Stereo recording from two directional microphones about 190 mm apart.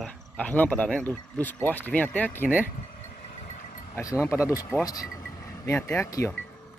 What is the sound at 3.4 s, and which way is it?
Vehicle, 40° left (ahead or behind).